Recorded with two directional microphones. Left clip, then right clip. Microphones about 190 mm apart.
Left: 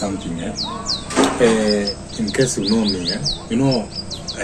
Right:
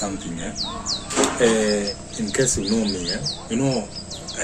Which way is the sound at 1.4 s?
Centre (ahead or behind).